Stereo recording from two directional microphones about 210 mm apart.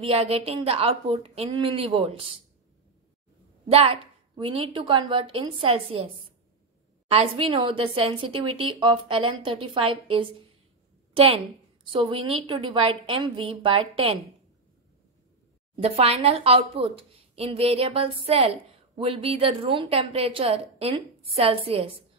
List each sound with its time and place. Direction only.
0.0 s speech: 25° right (ahead or behind)
3.7 s speech: 25° right (ahead or behind)
7.1 s speech: 25° right (ahead or behind)
15.7 s speech: 30° right (ahead or behind)